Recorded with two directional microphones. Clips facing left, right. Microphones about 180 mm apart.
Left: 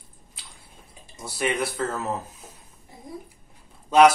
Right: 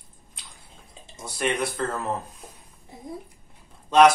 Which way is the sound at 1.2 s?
5° left (ahead or behind).